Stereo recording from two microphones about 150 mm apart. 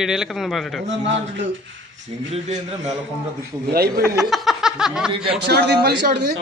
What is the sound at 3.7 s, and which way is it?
Speech, 90° right.